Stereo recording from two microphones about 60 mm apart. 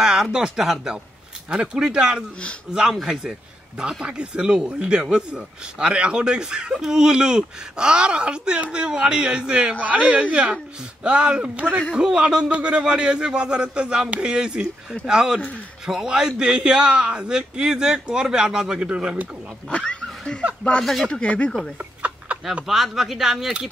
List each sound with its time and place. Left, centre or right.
0.0 s speech: centre
19.7 s dog: centre
20.8 s speech: centre
21.1 s speech: left
22.3 s a sound: right
22.7 s speech: centre